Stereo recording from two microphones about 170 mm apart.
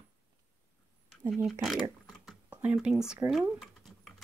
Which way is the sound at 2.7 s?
5° right (ahead or behind).